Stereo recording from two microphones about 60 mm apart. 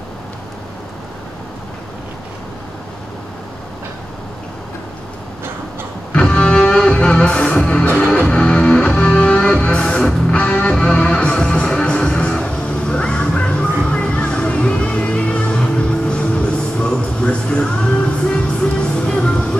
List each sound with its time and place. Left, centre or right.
6.1 s music: centre